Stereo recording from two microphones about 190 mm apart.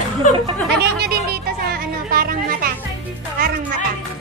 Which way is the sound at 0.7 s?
55° right (ahead or behind).